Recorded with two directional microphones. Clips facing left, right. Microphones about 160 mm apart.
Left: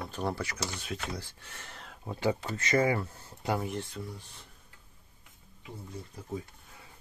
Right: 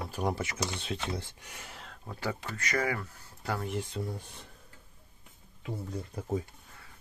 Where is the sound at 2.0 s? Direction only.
20° left (ahead or behind).